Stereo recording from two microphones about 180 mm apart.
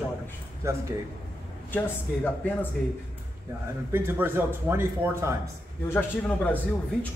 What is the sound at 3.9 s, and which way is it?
Speech, 10° right (ahead or behind).